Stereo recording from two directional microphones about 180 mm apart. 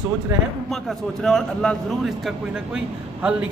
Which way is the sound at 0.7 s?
Centre (ahead or behind).